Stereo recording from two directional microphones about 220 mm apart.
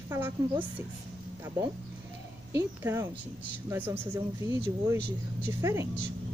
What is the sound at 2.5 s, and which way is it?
A woman's voice, 10° right (ahead or behind).